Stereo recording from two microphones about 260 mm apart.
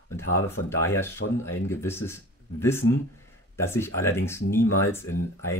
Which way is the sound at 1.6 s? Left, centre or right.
Centre.